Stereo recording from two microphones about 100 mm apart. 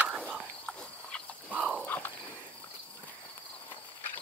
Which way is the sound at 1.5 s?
15° right (ahead or behind).